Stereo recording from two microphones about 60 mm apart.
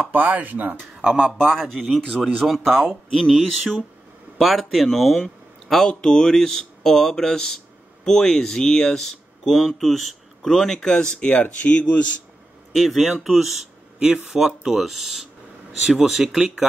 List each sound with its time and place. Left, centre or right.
0.1 s speech: right
1.0 s speech: centre
1.4 s speech: centre
11.1 s speech: left
12.7 s speech: centre